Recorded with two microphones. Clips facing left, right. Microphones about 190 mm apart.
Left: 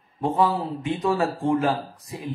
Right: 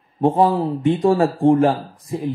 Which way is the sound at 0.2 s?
50° right (ahead or behind).